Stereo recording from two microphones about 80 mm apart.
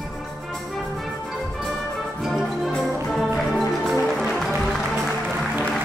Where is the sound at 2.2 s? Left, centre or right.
Centre.